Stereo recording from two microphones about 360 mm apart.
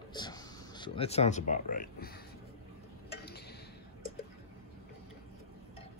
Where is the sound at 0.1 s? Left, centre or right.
Centre.